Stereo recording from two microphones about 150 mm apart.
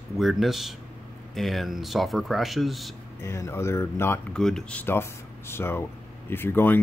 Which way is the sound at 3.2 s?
20° left (ahead or behind).